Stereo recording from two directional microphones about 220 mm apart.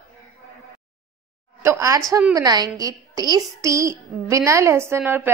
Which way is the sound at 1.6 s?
15° right (ahead or behind).